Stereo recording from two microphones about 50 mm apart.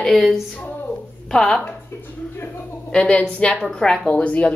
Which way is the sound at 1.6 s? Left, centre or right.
Left.